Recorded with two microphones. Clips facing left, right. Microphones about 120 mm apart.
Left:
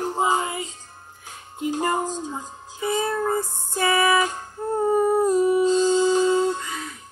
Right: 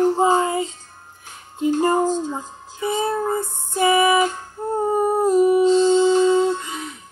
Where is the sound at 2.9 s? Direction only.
25° right (ahead or behind).